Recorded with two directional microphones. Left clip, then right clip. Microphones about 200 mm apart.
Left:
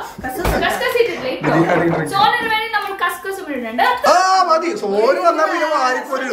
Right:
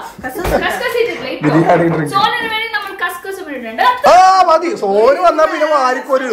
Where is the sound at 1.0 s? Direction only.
Centre (ahead or behind).